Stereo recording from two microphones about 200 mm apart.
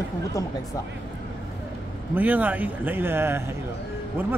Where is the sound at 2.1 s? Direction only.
10° right (ahead or behind).